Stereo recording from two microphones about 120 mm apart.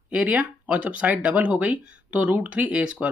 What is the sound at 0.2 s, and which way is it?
Speech, 15° right (ahead or behind).